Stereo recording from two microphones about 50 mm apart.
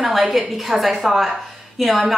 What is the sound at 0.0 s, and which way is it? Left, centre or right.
A woman's voice, centre.